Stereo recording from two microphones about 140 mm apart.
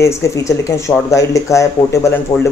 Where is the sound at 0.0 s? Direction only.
20° left (ahead or behind).